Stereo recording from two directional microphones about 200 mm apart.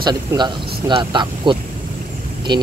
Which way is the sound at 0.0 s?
20° right (ahead or behind).